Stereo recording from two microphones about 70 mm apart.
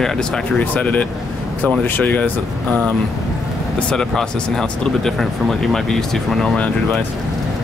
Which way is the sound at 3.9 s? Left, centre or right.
Centre.